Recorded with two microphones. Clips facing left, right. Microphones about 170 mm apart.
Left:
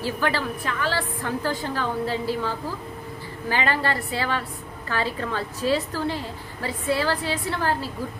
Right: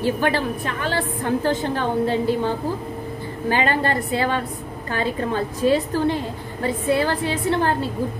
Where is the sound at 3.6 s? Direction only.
20° right (ahead or behind).